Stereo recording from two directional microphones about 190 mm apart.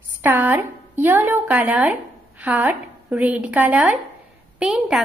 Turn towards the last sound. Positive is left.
turn(degrees=-5)  # may be behind; listen again after turning